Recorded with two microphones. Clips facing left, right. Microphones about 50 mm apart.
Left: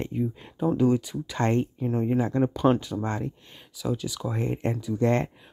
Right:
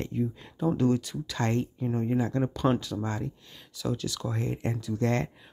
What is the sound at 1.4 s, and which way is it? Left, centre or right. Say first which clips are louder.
Speech: left 4 dB; left.